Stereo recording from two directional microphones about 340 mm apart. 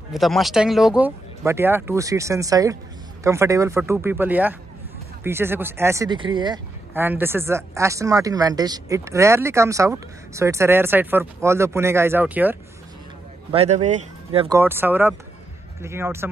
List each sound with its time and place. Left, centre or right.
0.1 s speech: centre
13.5 s speech: centre